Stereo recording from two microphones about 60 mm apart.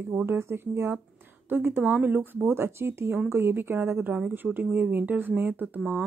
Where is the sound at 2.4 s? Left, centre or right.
Right.